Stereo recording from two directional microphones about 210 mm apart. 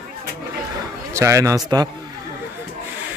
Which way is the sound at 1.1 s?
15° right (ahead or behind).